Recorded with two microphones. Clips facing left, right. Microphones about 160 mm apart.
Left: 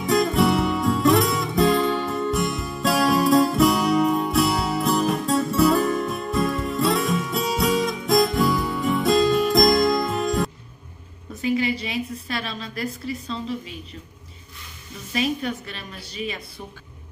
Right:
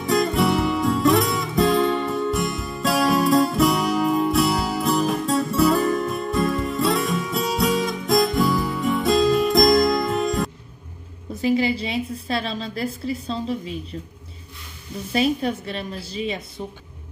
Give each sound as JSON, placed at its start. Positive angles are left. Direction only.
{"t": 0.0, "sound": "music", "side_deg": 0}
{"t": 11.4, "sound": "a sound", "side_deg": -30}
{"t": 15.4, "sound": "a woman's voice", "side_deg": -30}